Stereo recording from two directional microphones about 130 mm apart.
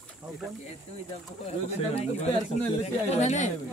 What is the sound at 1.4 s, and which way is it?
Speech, 55° left (ahead or behind).